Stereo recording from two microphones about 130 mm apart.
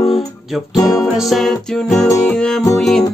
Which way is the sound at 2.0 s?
25° left (ahead or behind).